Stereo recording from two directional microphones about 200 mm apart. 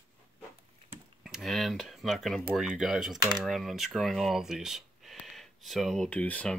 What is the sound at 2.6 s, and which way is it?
Speech, centre (ahead or behind).